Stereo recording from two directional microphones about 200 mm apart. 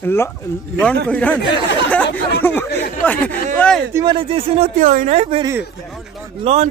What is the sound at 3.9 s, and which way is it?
Speech, 25° right (ahead or behind).